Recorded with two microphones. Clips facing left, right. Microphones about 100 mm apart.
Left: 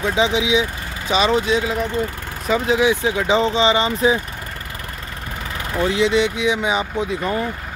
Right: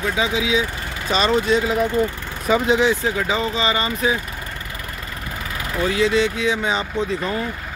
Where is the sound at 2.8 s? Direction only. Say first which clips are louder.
Left 2 dB; 15° left (ahead or behind).